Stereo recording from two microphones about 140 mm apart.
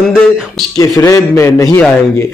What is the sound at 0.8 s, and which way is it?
Speech, 25° left (ahead or behind).